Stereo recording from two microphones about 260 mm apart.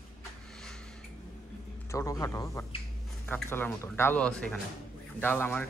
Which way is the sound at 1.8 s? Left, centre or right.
Centre.